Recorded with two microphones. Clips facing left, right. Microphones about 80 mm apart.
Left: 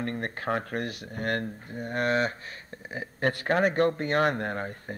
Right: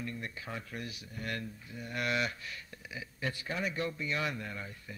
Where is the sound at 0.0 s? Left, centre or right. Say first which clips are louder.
Left 10 dB; left.